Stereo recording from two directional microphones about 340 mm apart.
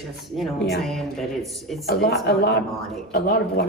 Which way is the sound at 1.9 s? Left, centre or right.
Left.